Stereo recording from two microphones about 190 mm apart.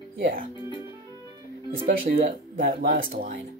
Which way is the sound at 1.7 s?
50° right (ahead or behind).